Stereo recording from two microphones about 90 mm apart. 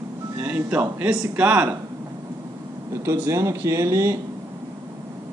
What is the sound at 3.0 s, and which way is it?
Speech, 30° right (ahead or behind).